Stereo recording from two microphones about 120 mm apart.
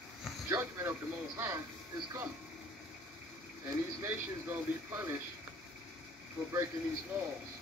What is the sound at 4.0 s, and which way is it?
Speech, 20° right (ahead or behind).